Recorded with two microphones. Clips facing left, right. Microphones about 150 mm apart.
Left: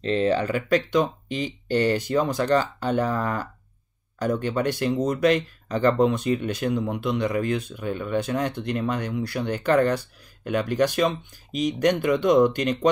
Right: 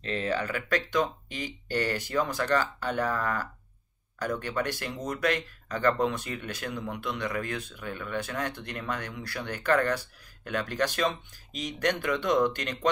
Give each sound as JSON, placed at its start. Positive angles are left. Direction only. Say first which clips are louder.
{"t": 0.0, "sound": "speech", "louder": "left 8 dB", "side_deg": 25}